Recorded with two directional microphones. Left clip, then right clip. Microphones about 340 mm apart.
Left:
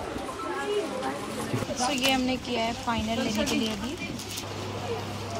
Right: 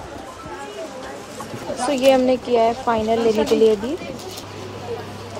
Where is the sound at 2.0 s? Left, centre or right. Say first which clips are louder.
Right 15 dB; centre.